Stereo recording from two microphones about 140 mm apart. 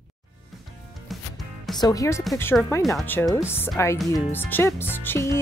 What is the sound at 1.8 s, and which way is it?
Speech, 25° left (ahead or behind).